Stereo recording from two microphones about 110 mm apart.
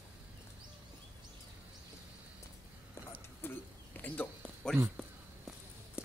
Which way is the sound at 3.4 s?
20° left (ahead or behind).